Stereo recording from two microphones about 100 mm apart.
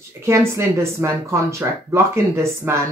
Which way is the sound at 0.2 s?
25° right (ahead or behind).